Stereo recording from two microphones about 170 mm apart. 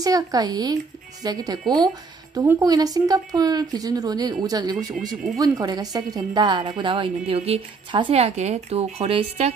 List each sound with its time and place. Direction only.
0.0 s a woman's voice: 20° right (ahead or behind); by 9.5 s 35° right (ahead or behind)